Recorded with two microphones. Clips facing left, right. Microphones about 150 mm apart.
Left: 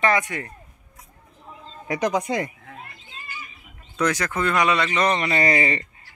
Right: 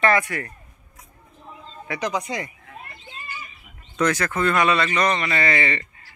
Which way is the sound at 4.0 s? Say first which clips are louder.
Right 1 dB; 15° left (ahead or behind).